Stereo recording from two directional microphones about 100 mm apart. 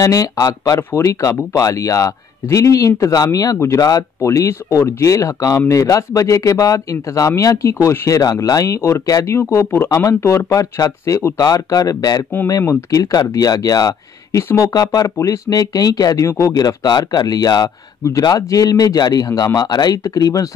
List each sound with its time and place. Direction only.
0.0 s speech: 35° left (ahead or behind)
15.0 s speech: 30° left (ahead or behind)